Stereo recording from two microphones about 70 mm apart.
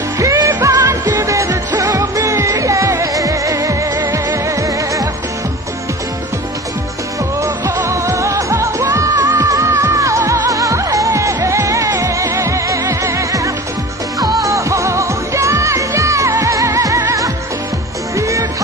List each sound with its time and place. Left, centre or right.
0.2 s music: right
7.4 s music: right
18.1 s music: right